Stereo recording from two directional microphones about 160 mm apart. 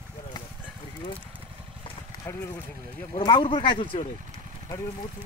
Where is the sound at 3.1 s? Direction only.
30° left (ahead or behind).